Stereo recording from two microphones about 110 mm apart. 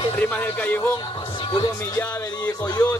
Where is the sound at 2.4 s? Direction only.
35° left (ahead or behind).